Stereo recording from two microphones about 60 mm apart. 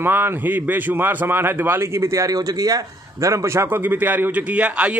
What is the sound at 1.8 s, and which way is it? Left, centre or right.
A man's voice, right.